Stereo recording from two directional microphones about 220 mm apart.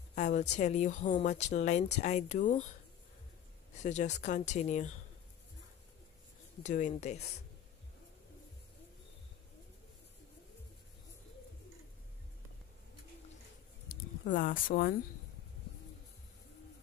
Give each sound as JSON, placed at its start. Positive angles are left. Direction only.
{"t": 0.1, "sound": "speech", "side_deg": 30}
{"t": 3.8, "sound": "speech", "side_deg": 30}
{"t": 6.6, "sound": "speech", "side_deg": 35}
{"t": 14.2, "sound": "speech", "side_deg": 45}